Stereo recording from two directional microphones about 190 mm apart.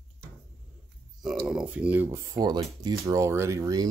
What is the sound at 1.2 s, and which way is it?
Speech, centre (ahead or behind).